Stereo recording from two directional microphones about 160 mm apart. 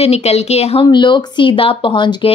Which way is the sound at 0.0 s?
40° left (ahead or behind).